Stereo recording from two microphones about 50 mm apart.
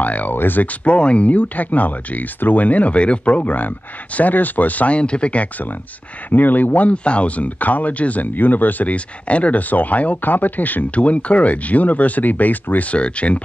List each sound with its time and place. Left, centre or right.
0.0 s speech: left